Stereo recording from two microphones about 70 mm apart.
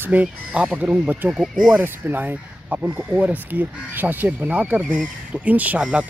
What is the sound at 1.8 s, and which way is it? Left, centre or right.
Speech, right.